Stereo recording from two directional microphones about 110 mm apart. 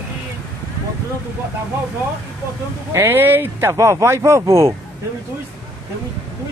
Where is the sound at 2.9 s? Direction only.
20° right (ahead or behind).